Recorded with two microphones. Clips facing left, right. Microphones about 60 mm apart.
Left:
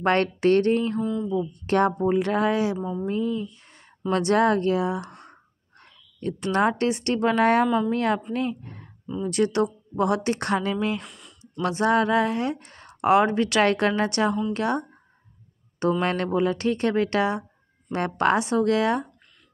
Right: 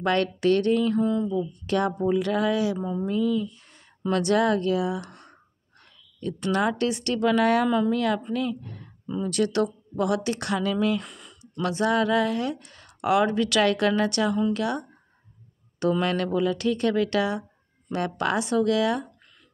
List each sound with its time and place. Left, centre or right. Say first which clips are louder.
0.0 s speech: left 2 dB; left
0.9 s mantra: right 3 dB; centre
1.3 s a woman's voice: left 2 dB; left
11.0 s a sound: right 3 dB; centre
11.6 s speech: left 2 dB; left
16.0 s speech: left 1 dB; left